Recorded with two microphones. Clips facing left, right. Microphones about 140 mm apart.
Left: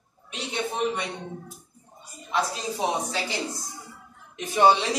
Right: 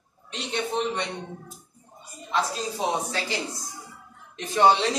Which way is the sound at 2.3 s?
15° left (ahead or behind).